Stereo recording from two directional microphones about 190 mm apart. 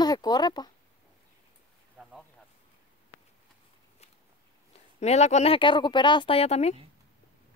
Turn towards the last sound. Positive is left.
turn(degrees=35)  # may be behind; listen again after turning